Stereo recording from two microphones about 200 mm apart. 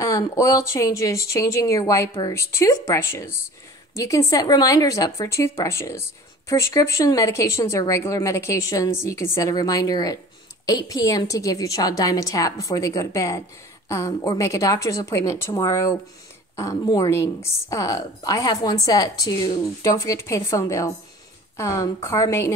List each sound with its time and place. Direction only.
0.0 s a woman's voice: 15° left (ahead or behind)